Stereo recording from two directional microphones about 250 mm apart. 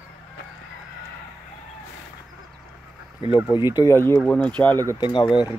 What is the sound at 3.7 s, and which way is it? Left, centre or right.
Speech, centre.